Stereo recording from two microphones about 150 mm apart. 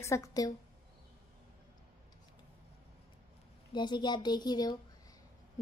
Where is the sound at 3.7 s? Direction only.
30° left (ahead or behind).